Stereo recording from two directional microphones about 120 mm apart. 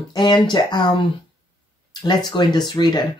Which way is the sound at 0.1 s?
40° left (ahead or behind).